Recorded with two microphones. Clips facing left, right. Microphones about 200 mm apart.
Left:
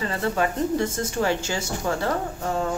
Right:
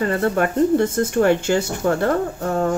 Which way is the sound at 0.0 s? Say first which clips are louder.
Right 5 dB; 55° right (ahead or behind).